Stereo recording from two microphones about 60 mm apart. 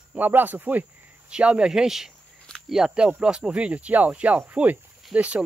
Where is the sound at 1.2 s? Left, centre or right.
Centre.